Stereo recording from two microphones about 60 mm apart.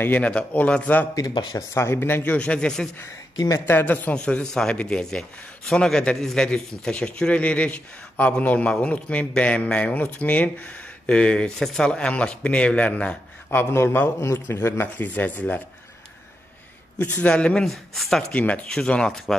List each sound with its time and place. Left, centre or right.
0.2 s speech: centre
1.1 s speech: left
1.7 s speech: left
2.3 s speech: centre
3.3 s speech: left
3.6 s speech: left
4.1 s speech: centre
11.1 s speech: centre
11.5 s speech: centre; by 13.2 s left
13.5 s a man's voice: left
15.0 s speech: left
17.0 s speech: left
17.6 s speech: centre
18.3 s speech: left